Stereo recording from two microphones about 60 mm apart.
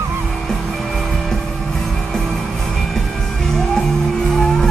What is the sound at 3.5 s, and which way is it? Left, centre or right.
Music, centre.